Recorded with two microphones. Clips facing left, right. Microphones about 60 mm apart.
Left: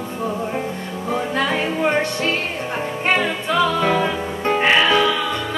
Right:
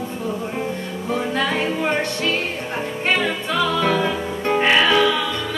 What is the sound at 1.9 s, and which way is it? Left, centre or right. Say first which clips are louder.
Music: left 1 dB; left.